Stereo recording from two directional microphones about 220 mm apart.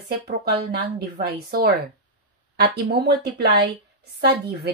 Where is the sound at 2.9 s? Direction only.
50° right (ahead or behind).